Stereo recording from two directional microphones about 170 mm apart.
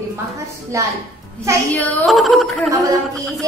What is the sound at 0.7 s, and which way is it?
Speech, 20° right (ahead or behind).